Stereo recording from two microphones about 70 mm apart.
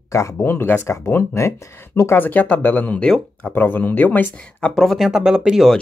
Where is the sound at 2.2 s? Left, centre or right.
Left.